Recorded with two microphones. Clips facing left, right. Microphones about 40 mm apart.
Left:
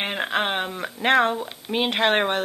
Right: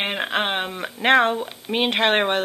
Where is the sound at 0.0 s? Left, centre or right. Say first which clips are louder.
Right 1 dB; centre.